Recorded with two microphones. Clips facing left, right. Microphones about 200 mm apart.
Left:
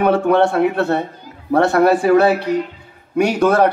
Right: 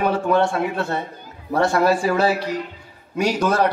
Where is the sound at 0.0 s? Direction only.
60° left (ahead or behind).